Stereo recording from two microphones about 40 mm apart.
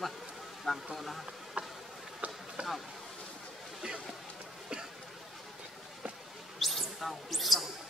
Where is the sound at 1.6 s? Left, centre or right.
Right.